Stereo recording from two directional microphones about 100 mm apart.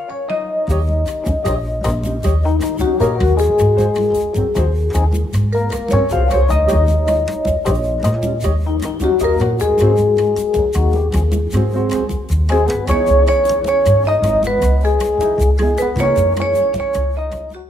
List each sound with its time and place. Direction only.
2.8 s music: 5° right (ahead or behind)
12.4 s music: centre (ahead or behind)